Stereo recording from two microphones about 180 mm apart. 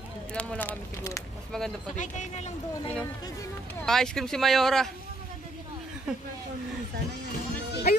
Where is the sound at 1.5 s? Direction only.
5° left (ahead or behind).